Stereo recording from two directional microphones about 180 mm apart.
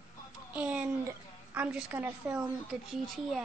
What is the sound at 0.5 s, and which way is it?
A woman's voice, 10° right (ahead or behind).